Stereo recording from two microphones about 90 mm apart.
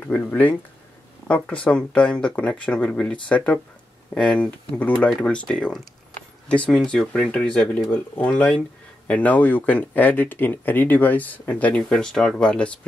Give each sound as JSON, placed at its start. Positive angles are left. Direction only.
{"t": 0.0, "sound": "speech", "side_deg": 15}